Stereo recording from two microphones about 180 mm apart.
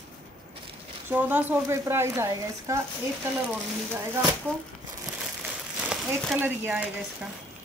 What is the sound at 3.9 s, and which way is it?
Speech, 15° right (ahead or behind).